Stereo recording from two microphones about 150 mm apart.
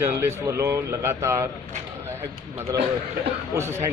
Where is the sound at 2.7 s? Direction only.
25° right (ahead or behind).